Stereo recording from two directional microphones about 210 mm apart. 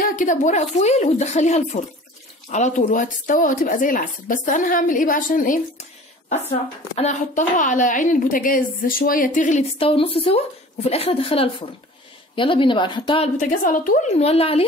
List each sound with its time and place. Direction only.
0.0 s a woman's voice: 40° left (ahead or behind); by 13.3 s 25° left (ahead or behind)
13.4 s a woman's voice: 35° left (ahead or behind)